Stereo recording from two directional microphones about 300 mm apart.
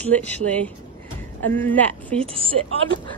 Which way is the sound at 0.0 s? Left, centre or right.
Centre.